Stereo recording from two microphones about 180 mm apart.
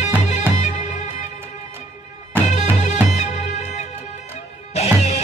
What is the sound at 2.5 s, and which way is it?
Music, 40° left (ahead or behind).